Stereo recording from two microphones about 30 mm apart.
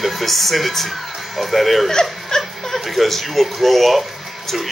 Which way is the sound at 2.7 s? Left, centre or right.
Centre.